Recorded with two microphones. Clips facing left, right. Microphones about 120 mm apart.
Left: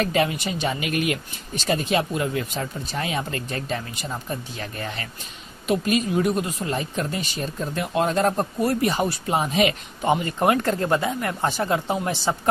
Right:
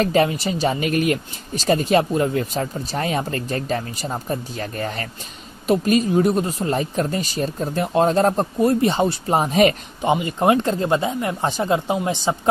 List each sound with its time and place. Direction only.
0.0 s speech: 35° right (ahead or behind)
10.0 s speech: 20° right (ahead or behind)